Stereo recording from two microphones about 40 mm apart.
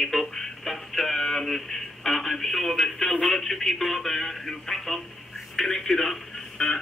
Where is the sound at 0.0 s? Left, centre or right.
Centre.